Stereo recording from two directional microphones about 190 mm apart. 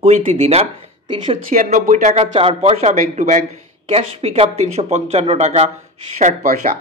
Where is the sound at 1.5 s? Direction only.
40° right (ahead or behind).